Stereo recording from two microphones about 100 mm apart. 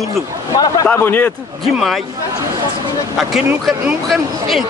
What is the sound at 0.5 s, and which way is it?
Speech, 40° left (ahead or behind).